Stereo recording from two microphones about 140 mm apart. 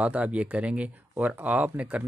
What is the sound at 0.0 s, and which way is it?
Speech, 10° right (ahead or behind).